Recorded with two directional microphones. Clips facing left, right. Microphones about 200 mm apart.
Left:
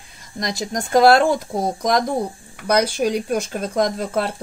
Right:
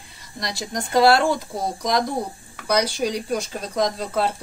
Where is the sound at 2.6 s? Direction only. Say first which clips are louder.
Left 3 dB; 50° left (ahead or behind).